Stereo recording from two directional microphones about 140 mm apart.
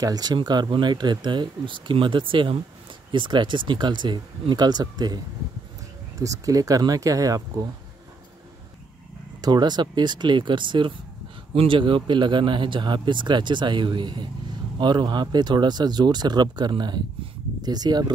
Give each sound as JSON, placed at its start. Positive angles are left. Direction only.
{"t": 0.0, "sound": "speech", "side_deg": -30}
{"t": 9.4, "sound": "speech", "side_deg": -30}